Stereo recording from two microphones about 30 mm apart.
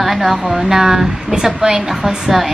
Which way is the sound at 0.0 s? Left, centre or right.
Centre.